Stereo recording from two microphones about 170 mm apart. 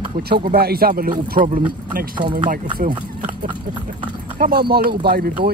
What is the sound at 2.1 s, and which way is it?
Speech, 30° right (ahead or behind).